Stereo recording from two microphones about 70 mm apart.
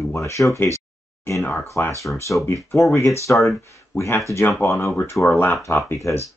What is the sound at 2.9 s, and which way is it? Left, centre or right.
Speech, left.